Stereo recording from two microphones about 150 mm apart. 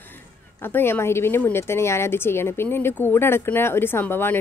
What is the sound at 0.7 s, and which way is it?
Speech, 15° left (ahead or behind).